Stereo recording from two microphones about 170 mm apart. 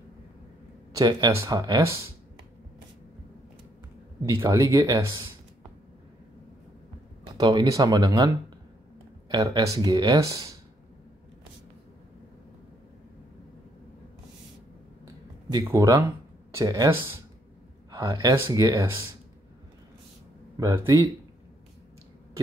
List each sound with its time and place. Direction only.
0.9 s speech: 20° right (ahead or behind)
4.3 s speech: 20° right (ahead or behind)
7.3 s speech: 25° right (ahead or behind)
9.3 s speech: 25° right (ahead or behind)
15.5 s speech: 20° right (ahead or behind)
20.5 s speech: 20° right (ahead or behind)